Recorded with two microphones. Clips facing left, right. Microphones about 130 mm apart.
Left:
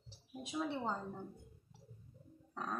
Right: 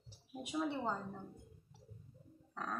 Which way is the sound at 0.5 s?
5° right (ahead or behind).